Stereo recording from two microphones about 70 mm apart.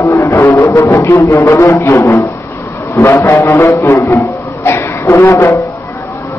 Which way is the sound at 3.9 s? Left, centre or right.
Left.